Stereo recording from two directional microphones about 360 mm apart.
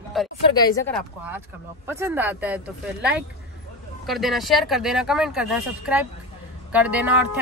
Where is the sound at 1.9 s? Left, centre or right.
Centre.